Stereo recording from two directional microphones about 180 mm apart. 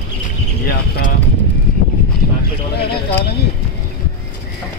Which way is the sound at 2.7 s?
60° left (ahead or behind).